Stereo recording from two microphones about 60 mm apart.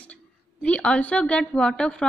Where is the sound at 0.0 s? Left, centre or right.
Left.